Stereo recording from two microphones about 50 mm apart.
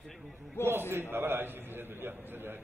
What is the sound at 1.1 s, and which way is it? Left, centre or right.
A man's voice, right.